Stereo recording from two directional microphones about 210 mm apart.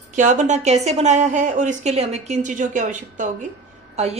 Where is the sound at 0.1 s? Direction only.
35° right (ahead or behind).